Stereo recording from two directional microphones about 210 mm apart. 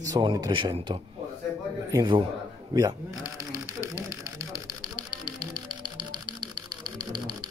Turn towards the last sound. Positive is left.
turn(degrees=-20)  # may be behind; listen again after turning